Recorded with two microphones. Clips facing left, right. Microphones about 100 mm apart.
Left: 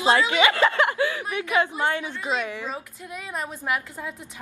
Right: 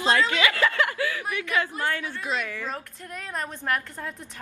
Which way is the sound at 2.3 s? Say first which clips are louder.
Left 3 dB; centre (ahead or behind).